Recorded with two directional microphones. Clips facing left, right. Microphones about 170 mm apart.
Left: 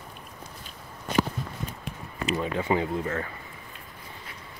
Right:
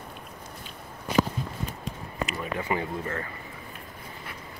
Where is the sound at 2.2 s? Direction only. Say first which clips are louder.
Left 4 dB; 30° left (ahead or behind).